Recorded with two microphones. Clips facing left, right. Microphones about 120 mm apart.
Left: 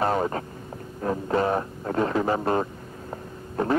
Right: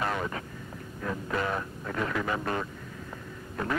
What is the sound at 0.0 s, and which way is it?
Speech, 35° left (ahead or behind).